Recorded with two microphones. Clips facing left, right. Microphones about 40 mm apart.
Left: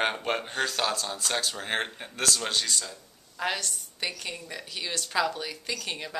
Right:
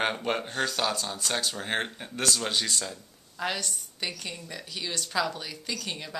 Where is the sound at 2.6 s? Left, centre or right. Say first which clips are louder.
Right 1 dB; centre.